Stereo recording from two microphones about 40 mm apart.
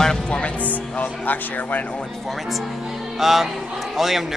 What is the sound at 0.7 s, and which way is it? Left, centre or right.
Speech, left.